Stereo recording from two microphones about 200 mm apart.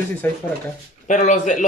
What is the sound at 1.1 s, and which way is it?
Speech, 40° left (ahead or behind).